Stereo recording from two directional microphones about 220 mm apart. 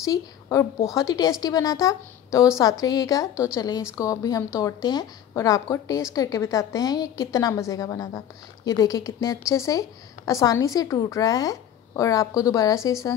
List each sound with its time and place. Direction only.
0.0 s a woman's voice: 15° left (ahead or behind)